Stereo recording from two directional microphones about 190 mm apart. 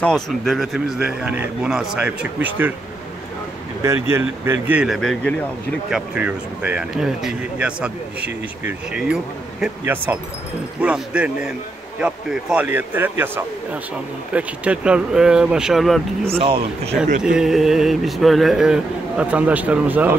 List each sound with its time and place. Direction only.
0.0 s speech: centre (ahead or behind)
3.8 s speech: 15° right (ahead or behind)
16.3 s speech: 30° right (ahead or behind)
17.2 s speech: 5° right (ahead or behind)